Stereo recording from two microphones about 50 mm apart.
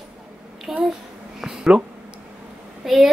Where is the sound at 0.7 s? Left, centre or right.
Centre.